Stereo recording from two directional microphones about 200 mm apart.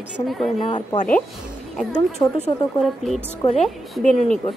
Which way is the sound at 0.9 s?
40° left (ahead or behind).